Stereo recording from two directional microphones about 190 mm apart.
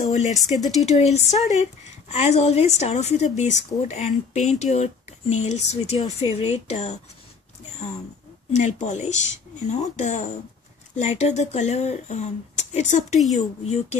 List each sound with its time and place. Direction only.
0.1 s a woman's voice: 40° left (ahead or behind)
8.5 s a woman's voice: 40° left (ahead or behind)